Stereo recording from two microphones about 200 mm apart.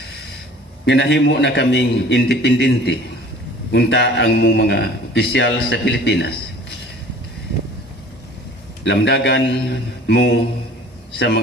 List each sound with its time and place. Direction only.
0.8 s a man's voice: 60° left (ahead or behind)
8.8 s a man's voice: 60° left (ahead or behind)